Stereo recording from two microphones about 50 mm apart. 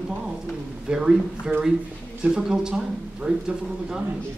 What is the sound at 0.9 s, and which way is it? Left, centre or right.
A man's voice, centre.